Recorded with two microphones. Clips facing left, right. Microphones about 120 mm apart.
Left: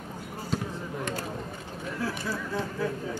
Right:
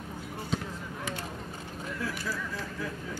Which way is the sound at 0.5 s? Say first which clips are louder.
Left 2 dB; centre (ahead or behind).